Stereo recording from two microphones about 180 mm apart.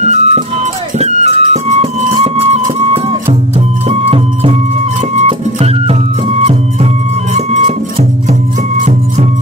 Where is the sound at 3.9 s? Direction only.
35° right (ahead or behind).